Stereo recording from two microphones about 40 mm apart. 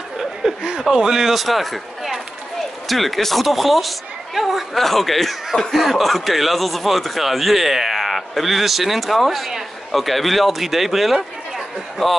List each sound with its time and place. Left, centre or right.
0.2 s chuckle: centre
0.6 s speech: centre